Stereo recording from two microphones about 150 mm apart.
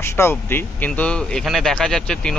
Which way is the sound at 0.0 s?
15° left (ahead or behind).